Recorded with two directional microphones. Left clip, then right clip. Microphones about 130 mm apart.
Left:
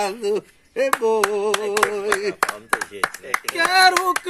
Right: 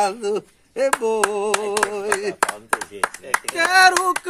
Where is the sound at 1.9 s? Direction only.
20° right (ahead or behind).